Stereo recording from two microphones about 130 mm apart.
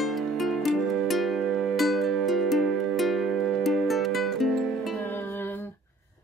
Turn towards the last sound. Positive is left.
turn(degrees=15)  # may be behind; listen again after turning